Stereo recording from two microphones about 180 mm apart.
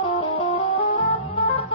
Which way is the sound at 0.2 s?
30° left (ahead or behind).